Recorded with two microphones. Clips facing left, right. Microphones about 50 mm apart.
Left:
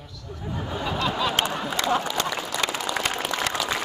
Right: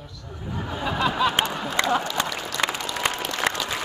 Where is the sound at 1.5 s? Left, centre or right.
Centre.